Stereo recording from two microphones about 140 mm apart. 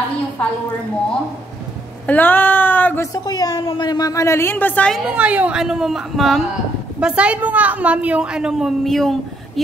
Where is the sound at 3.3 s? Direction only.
30° left (ahead or behind); by 5.0 s 10° left (ahead or behind).